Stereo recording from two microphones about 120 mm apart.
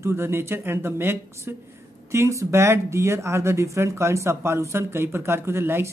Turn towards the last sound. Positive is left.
turn(degrees=-20)  # may be behind; listen again after turning